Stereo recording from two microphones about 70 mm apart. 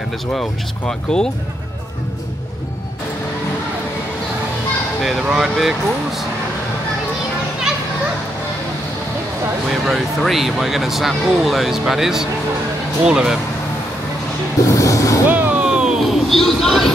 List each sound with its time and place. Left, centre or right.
0.3 s speech: centre
5.0 s speech: centre
9.8 s speech: centre
14.6 s speech: left
15.2 s music: right
15.6 s a sound: centre